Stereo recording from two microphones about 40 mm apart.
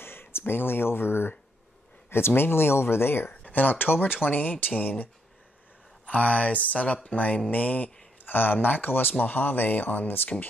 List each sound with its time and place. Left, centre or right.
0.0 s a sound: left
2.0 s speech: left
3.3 s speech: left
8.3 s speech: left